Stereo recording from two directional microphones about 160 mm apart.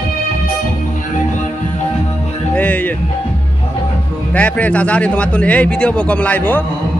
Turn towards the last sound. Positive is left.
turn(degrees=10)  # may be behind; listen again after turning